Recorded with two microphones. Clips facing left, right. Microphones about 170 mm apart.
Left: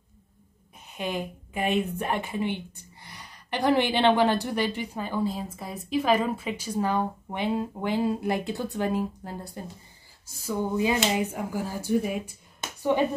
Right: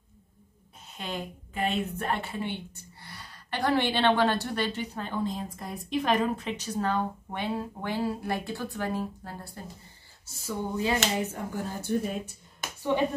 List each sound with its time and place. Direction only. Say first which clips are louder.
0.8 s a woman's voice: left 5 dB; 15° left (ahead or behind)
10.8 s a woman's voice: left 2 dB; 15° left (ahead or behind)
12.5 s a sound: left 3 dB; 15° left (ahead or behind)